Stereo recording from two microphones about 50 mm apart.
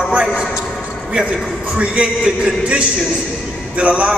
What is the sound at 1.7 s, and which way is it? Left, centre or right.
Speech, right.